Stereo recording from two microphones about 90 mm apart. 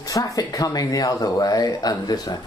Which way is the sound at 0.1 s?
40° left (ahead or behind).